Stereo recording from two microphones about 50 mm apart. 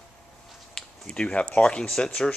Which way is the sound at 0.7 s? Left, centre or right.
Centre.